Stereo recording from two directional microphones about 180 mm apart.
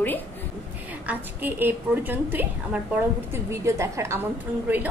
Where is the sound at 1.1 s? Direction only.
10° right (ahead or behind).